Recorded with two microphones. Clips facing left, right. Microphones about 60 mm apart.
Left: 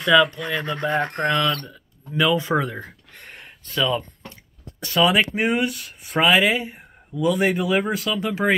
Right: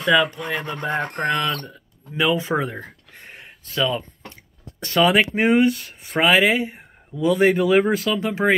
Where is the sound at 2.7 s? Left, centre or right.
Centre.